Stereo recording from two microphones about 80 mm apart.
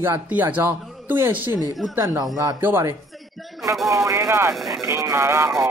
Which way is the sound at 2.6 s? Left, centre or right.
Right.